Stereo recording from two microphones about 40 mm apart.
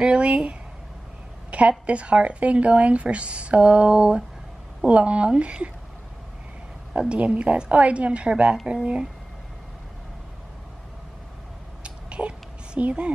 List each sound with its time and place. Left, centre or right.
0.0 s speech: right
7.0 s speech: right
7.7 s speech: right
11.8 s a sound: right